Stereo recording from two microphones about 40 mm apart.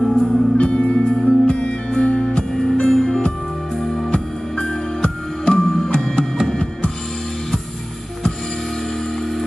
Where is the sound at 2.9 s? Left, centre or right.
Centre.